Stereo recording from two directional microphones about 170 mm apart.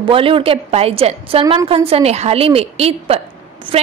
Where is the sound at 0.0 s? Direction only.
30° right (ahead or behind).